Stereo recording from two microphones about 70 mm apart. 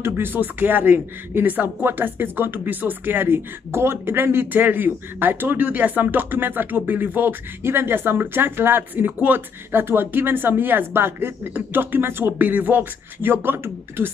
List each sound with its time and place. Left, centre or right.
0.0 s speech: right